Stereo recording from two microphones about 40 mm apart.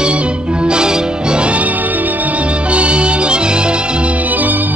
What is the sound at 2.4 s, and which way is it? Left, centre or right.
Music, right.